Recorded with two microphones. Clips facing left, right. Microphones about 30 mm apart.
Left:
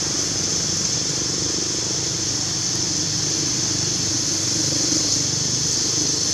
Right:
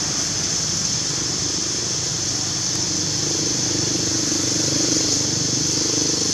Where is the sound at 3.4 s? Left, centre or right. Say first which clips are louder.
Right 1 dB; centre.